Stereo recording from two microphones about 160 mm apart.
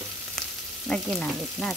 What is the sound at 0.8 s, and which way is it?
Frying, centre (ahead or behind).